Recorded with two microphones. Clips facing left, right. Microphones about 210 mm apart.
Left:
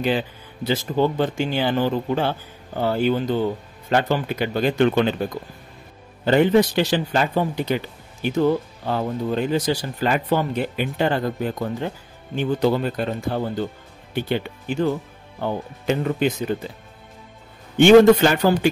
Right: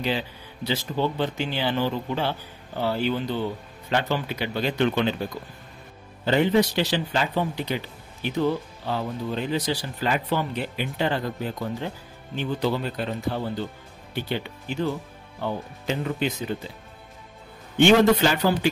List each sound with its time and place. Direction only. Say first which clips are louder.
0.7 s speech: left 5 dB; 45° left (ahead or behind)
6.2 s speech: left 4 dB; 50° left (ahead or behind)
17.7 s speech: left 6 dB; 50° left (ahead or behind)